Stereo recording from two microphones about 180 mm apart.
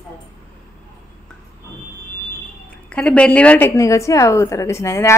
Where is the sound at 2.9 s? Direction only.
5° left (ahead or behind).